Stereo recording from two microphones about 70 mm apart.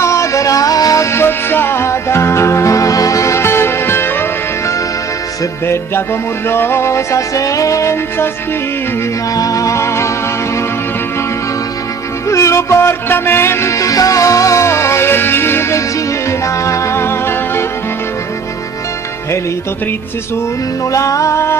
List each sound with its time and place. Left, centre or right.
0.0 s music: left
1.1 s music: left
6.5 s music: left
9.3 s music: left
12.3 s music: left
16.3 s music: left
20.9 s music: left